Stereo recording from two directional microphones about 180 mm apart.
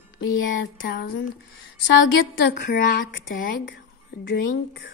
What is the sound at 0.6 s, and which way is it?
Speech, 70° left (ahead or behind).